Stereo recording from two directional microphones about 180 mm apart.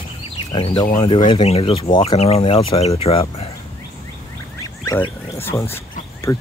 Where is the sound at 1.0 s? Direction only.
30° left (ahead or behind).